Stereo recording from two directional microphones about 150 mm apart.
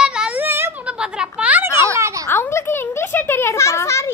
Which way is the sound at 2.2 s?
15° left (ahead or behind).